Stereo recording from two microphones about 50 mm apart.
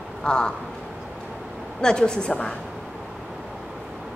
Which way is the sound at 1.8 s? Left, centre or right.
Centre.